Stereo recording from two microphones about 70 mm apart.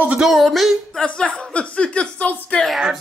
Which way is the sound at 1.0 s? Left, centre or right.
Centre.